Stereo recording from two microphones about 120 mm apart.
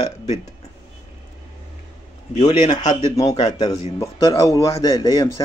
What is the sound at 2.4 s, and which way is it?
Speech, 65° left (ahead or behind).